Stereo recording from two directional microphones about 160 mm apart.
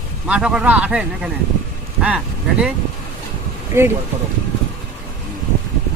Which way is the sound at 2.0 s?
5° right (ahead or behind).